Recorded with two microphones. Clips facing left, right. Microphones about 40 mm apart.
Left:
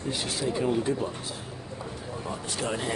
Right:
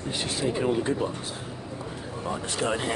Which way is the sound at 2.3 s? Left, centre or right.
Right.